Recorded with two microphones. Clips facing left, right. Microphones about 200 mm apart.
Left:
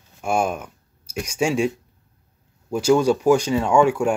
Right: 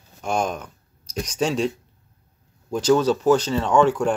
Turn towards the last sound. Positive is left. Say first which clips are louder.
# left 1 dB
turn(degrees=10)  # may be behind; listen again after turning